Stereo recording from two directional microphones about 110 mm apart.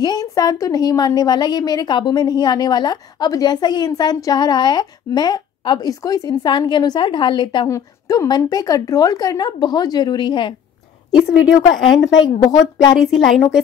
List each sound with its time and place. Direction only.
0.0 s a woman's voice: 35° left (ahead or behind)
7.6 s a woman's voice: 30° left (ahead or behind); by 10.5 s 45° left (ahead or behind)
11.2 s speech: 10° right (ahead or behind)
11.8 s a woman's voice: 40° left (ahead or behind)
12.9 s a woman's voice: centre (ahead or behind)